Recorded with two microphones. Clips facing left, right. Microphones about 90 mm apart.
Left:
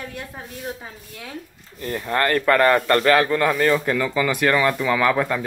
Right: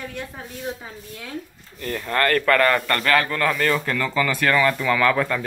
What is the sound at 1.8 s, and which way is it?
Speech, 20° left (ahead or behind).